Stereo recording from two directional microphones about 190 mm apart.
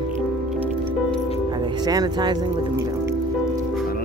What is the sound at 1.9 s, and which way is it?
Speech, 20° right (ahead or behind).